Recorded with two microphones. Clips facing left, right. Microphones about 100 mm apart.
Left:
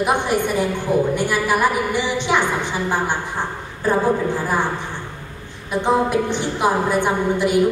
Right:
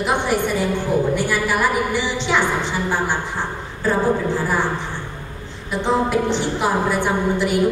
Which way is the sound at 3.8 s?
15° left (ahead or behind).